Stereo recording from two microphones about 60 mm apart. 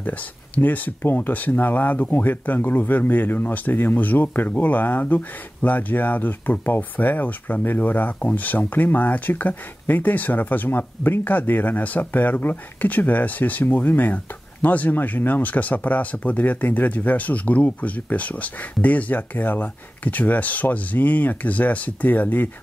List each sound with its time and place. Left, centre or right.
0.6 s speech: left